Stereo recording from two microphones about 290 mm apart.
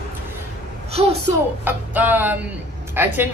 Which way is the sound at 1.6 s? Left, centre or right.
Centre.